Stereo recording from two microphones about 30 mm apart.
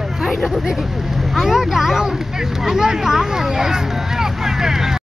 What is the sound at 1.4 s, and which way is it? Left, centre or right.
Speech, centre.